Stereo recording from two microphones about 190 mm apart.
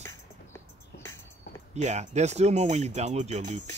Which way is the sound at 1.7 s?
35° right (ahead or behind).